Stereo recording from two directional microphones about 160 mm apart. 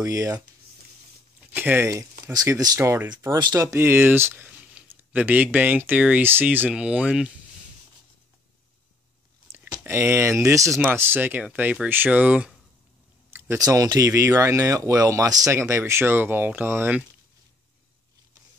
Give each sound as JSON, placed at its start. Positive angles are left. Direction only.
{"t": 0.0, "sound": "speech", "side_deg": -20}
{"t": 1.5, "sound": "speech", "side_deg": -10}
{"t": 9.5, "sound": "speech", "side_deg": -15}
{"t": 13.3, "sound": "speech", "side_deg": -20}